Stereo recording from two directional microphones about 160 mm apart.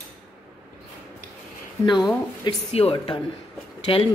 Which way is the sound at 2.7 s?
40° left (ahead or behind).